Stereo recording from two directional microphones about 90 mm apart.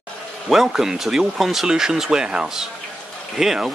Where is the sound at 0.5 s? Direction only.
5° right (ahead or behind).